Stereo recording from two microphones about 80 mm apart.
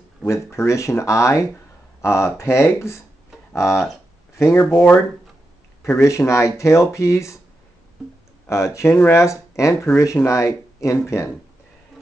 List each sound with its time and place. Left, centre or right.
0.3 s speech: left
3.7 s speech: centre
4.6 s speech: centre
5.8 s speech: left
8.5 s speech: left
8.8 s speech: left
9.1 s speech: left